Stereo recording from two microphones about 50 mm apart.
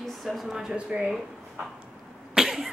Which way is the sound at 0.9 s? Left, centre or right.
Right.